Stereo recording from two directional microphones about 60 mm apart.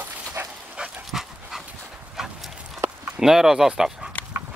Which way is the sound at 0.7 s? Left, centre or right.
Centre.